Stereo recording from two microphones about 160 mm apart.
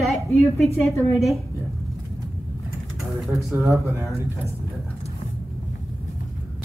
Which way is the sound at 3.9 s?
15° right (ahead or behind).